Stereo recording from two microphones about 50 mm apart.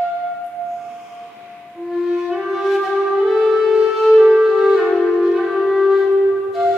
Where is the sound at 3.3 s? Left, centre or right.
Centre.